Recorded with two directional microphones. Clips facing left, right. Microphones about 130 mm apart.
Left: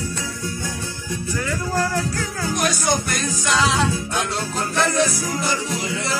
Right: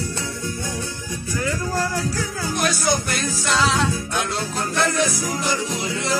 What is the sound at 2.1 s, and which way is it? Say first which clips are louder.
Music: left 1 dB; 10° right (ahead or behind).